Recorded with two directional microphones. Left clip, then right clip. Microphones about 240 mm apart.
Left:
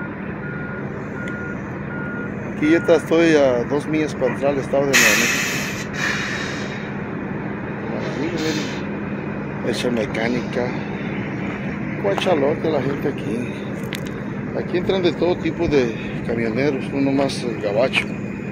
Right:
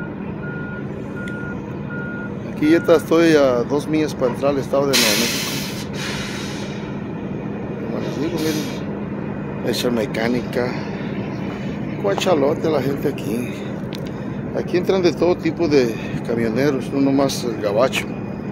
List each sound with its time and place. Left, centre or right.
2.7 s speech: centre
4.9 s speech: right
8.4 s vehicle: right
9.9 s speech: centre
12.1 s speech: centre
14.7 s speech: centre